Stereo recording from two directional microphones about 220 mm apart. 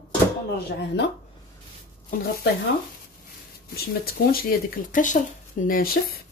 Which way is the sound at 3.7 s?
45° left (ahead or behind).